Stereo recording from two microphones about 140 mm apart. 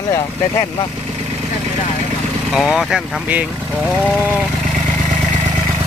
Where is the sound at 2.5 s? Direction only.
Centre (ahead or behind).